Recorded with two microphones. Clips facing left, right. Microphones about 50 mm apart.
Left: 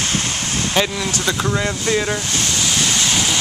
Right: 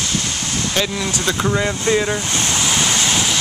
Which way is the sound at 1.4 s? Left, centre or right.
Centre.